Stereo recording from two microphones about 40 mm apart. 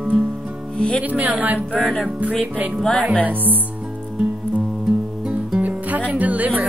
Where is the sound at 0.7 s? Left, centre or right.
Centre.